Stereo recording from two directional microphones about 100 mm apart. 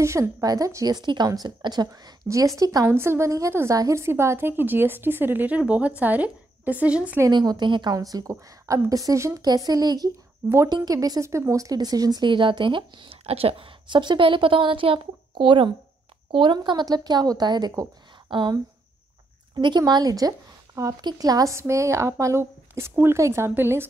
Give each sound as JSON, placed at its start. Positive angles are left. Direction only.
{"t": 0.0, "sound": "speech", "side_deg": -30}
{"t": 0.9, "sound": "a woman's voice", "side_deg": -45}
{"t": 2.2, "sound": "speech", "side_deg": -30}
{"t": 2.9, "sound": "a woman's voice", "side_deg": -25}
{"t": 7.2, "sound": "speech", "side_deg": -45}
{"t": 9.4, "sound": "a woman's voice", "side_deg": -40}
{"t": 18.3, "sound": "a woman's voice", "side_deg": -55}